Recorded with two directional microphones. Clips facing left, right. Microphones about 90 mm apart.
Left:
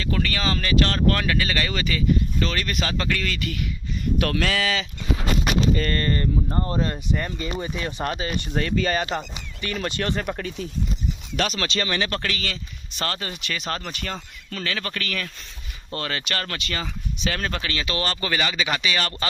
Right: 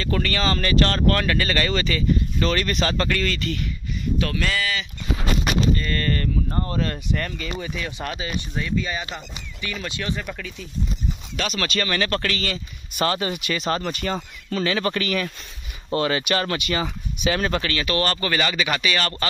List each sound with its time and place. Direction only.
0.0 s speech: 5° left (ahead or behind)
4.2 s speech: 70° left (ahead or behind); by 4.7 s 90° left
5.9 s speech: 25° left (ahead or behind)
7.3 s speech: 30° left (ahead or behind)
8.4 s speech: 60° left (ahead or behind)
9.0 s speech: 45° left (ahead or behind)
11.5 s speech: 25° left (ahead or behind)
12.9 s speech: 15° right (ahead or behind)
14.1 s speech: 20° right (ahead or behind)
17.6 s speech: 20° left (ahead or behind)